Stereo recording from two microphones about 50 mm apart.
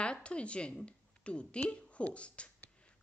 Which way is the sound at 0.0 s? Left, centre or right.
Left.